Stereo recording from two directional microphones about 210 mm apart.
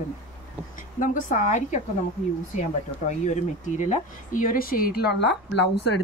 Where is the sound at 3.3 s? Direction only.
35° left (ahead or behind); by 5.7 s 55° left (ahead or behind).